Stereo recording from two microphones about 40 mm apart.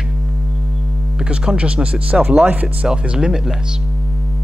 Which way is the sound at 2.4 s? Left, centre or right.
Right.